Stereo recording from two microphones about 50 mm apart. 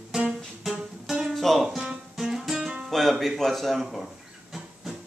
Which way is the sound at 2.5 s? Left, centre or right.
Centre.